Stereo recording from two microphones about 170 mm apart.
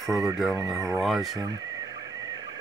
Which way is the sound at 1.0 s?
Centre (ahead or behind).